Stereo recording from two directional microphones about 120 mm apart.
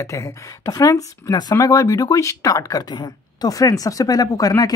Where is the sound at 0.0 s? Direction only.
25° left (ahead or behind).